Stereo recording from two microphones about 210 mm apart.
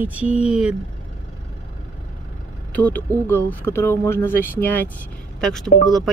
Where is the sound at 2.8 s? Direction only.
5° left (ahead or behind).